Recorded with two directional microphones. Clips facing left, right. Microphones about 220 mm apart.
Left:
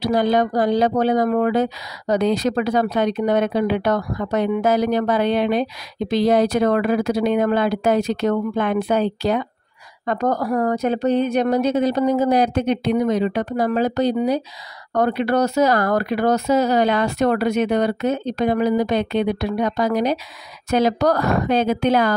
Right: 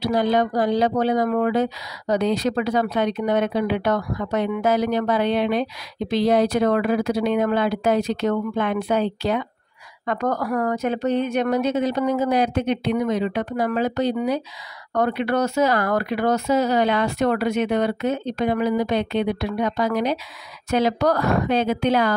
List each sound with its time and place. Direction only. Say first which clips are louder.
0.0 s speech: left 2 dB; 45° left (ahead or behind)